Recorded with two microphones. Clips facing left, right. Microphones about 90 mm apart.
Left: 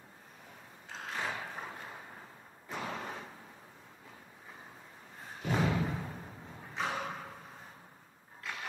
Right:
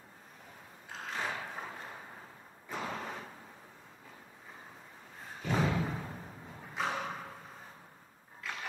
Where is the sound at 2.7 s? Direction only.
Centre (ahead or behind).